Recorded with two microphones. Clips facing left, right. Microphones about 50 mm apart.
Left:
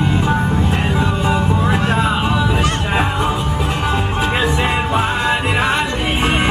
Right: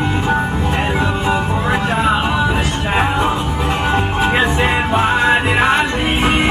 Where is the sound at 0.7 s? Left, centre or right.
Centre.